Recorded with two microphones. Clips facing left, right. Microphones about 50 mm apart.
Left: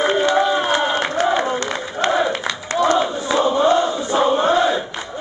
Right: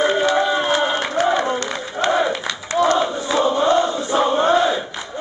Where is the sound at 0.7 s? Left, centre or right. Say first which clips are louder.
Even; centre.